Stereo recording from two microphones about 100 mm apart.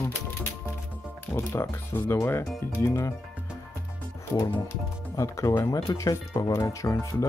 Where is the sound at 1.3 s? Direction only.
25° left (ahead or behind).